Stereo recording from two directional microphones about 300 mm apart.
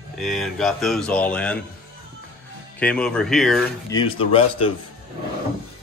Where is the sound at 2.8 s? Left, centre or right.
Centre.